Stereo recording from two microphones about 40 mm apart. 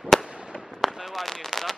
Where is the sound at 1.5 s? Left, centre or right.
Centre.